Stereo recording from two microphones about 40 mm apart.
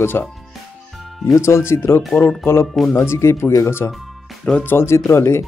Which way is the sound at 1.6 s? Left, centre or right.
Left.